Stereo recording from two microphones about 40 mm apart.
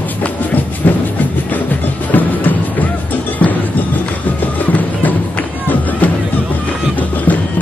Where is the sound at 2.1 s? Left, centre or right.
Left.